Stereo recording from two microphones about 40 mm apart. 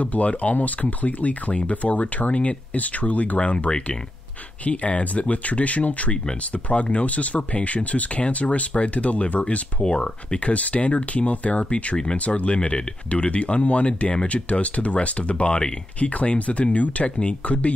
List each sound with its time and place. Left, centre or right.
0.0 s speech: left
4.6 s speech: left
10.5 s speech: left
12.0 s speech: left